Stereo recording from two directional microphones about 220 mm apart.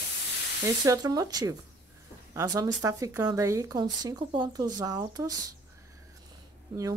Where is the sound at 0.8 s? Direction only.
15° right (ahead or behind).